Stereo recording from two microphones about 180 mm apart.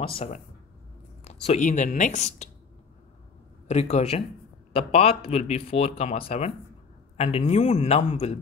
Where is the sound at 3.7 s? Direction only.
40° left (ahead or behind).